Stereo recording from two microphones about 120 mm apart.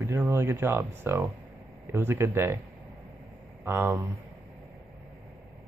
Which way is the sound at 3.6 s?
20° right (ahead or behind).